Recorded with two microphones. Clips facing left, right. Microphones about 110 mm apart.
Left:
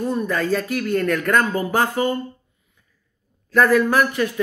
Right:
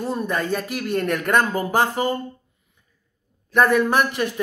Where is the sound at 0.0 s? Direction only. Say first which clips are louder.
Left 2 dB; 30° right (ahead or behind).